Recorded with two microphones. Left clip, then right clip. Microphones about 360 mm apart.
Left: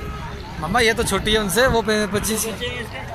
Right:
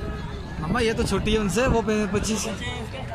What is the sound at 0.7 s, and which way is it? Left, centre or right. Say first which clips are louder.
Speech: left 6 dB; centre.